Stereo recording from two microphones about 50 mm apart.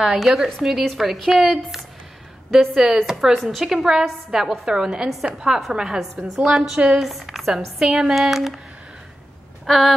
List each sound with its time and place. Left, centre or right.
0.0 s a woman's voice: centre
9.7 s a woman's voice: centre